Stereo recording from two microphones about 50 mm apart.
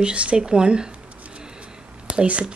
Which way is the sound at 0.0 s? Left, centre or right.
Right.